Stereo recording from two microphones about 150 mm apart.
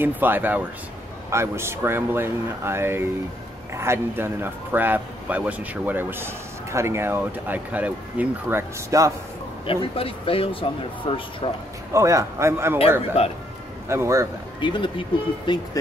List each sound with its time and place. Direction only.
0.0 s a man's voice: 15° right (ahead or behind)
9.7 s speech: 40° left (ahead or behind)
11.9 s a man's voice: 20° right (ahead or behind)
13.2 s speech: 40° left (ahead or behind)
13.8 s a man's voice: 20° right (ahead or behind)
14.6 s speech: 30° left (ahead or behind)